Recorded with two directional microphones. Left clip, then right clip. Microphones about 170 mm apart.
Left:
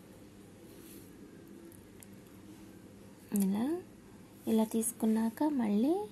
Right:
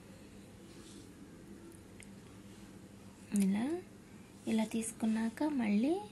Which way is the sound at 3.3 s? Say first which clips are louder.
Left 2 dB; 30° left (ahead or behind).